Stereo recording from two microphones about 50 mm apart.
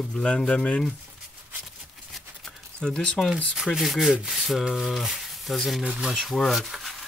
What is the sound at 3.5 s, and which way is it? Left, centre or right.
Sanding, centre.